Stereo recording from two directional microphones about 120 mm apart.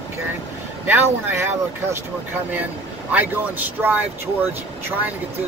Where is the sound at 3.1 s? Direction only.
15° right (ahead or behind).